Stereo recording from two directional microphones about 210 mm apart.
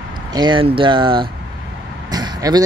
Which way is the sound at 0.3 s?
20° right (ahead or behind).